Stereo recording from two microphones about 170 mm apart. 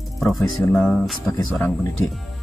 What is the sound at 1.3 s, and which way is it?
Speech, 15° left (ahead or behind).